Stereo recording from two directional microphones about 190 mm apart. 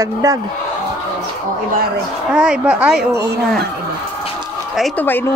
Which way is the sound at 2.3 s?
5° right (ahead or behind).